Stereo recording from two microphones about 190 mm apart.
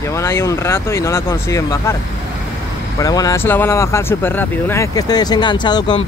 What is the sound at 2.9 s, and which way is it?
Speech, 20° left (ahead or behind).